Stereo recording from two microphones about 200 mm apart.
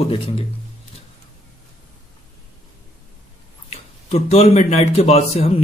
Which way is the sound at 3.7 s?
35° left (ahead or behind).